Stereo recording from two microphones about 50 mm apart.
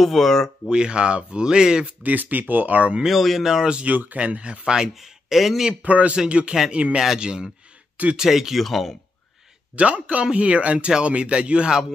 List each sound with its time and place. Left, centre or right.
0.0 s speech: centre
0.7 s speech: centre
2.0 s speech: right
3.1 s speech: centre
3.7 s speech: right; by 5.7 s centre
5.8 s speech: right; by 8.9 s centre
9.8 s speech: right